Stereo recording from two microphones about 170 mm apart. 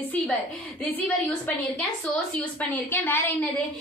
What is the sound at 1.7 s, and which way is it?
A woman's voice, 10° left (ahead or behind).